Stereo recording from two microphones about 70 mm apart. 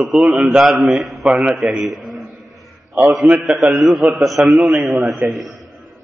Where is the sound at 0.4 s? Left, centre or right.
Centre.